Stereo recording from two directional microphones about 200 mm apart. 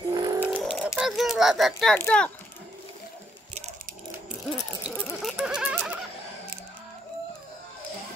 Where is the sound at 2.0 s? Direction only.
5° left (ahead or behind).